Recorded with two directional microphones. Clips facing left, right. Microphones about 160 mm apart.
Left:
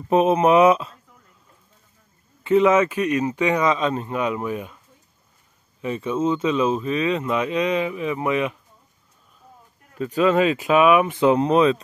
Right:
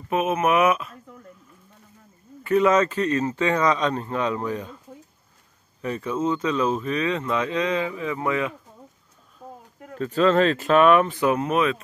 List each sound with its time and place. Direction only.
0.1 s speech: 30° left (ahead or behind)
2.4 s speech: 20° left (ahead or behind)
3.7 s speech: 5° left (ahead or behind)
5.9 s speech: 25° left (ahead or behind)
7.1 s speech: 15° left (ahead or behind)
9.9 s speech: 10° left (ahead or behind)
11.1 s speech: 25° left (ahead or behind)